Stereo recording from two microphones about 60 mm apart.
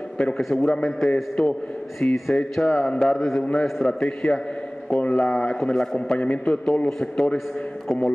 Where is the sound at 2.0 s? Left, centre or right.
Left.